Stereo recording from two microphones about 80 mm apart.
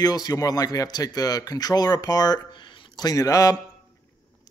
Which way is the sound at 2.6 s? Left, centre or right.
Left.